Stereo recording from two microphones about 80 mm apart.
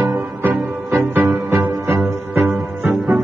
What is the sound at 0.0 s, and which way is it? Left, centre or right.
Music, right.